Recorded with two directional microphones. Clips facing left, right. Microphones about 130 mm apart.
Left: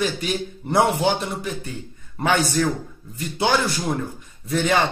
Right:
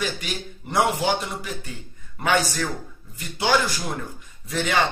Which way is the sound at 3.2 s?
30° left (ahead or behind).